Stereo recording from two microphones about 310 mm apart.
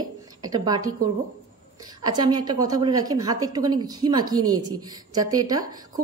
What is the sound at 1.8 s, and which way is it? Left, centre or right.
A woman's voice, centre.